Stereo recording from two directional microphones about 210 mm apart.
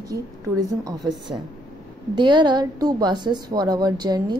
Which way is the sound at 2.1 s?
20° right (ahead or behind).